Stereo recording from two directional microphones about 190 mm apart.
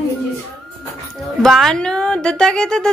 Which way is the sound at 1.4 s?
Centre (ahead or behind).